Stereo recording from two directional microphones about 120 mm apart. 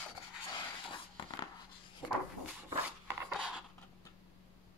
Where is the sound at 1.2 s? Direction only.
40° left (ahead or behind).